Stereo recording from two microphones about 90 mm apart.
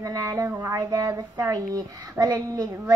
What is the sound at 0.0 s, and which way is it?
Speech, 40° right (ahead or behind).